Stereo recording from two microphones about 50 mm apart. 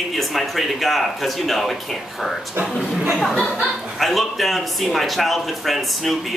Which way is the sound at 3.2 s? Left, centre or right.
Centre.